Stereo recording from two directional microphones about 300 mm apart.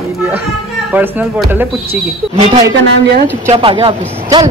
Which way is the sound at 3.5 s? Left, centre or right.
Centre.